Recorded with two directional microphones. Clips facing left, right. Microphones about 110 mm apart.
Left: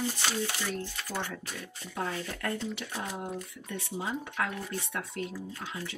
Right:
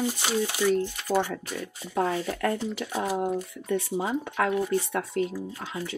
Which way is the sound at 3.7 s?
45° right (ahead or behind).